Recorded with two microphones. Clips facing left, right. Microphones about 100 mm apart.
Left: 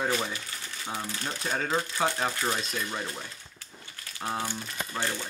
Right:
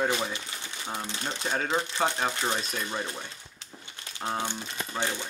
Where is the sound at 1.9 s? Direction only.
Centre (ahead or behind).